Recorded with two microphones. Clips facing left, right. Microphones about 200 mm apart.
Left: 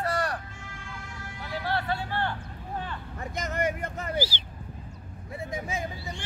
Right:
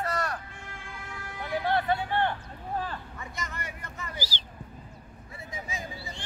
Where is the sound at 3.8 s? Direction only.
60° left (ahead or behind).